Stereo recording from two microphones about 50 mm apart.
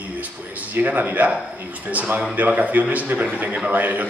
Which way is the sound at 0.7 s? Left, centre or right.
Right.